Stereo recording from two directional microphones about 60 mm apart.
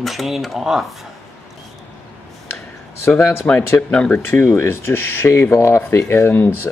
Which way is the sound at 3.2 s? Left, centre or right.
Left.